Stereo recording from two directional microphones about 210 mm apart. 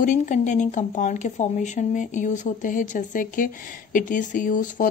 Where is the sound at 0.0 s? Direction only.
35° left (ahead or behind).